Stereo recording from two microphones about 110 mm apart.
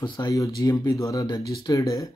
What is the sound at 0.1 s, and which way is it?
Speech, 35° left (ahead or behind).